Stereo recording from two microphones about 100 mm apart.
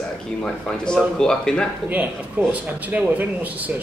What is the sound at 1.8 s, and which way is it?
Speech, 20° right (ahead or behind).